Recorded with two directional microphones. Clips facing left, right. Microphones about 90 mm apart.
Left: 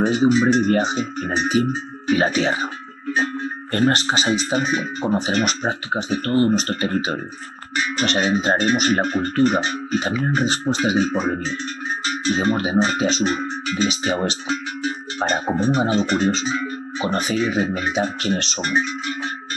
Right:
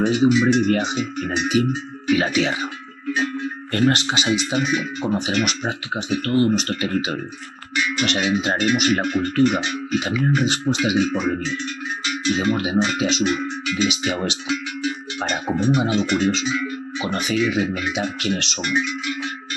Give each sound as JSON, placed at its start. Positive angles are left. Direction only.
{"t": 0.0, "sound": "speech", "side_deg": 40}